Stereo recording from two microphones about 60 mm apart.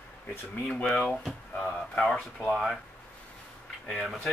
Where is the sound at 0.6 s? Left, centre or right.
Centre.